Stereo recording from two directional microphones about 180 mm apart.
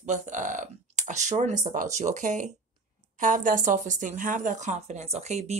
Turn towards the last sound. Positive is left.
turn(degrees=-35)  # may be behind; listen again after turning